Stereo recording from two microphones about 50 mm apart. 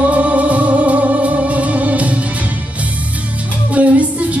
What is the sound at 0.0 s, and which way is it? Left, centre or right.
Music, right.